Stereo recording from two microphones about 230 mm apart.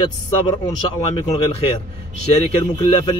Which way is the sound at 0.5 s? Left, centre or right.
Centre.